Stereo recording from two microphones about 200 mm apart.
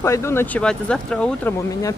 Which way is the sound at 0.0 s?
15° left (ahead or behind).